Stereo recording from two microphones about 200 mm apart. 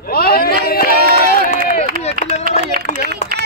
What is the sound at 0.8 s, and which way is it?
Run, 50° right (ahead or behind).